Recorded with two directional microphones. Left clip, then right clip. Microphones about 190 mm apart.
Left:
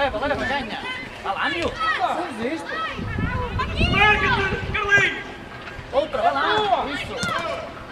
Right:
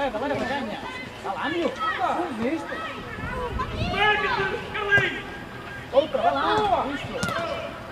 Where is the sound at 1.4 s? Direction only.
15° left (ahead or behind).